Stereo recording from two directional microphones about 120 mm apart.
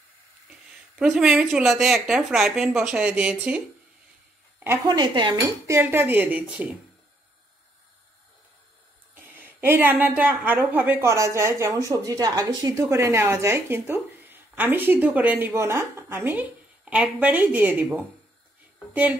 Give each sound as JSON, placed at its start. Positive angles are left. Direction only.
{"t": 0.9, "sound": "speech", "side_deg": -5}
{"t": 4.8, "sound": "cutlery", "side_deg": -35}
{"t": 5.7, "sound": "a woman's voice", "side_deg": -20}
{"t": 9.1, "sound": "a woman's voice", "side_deg": -15}